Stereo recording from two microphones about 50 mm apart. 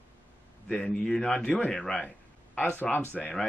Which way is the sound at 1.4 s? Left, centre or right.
Left.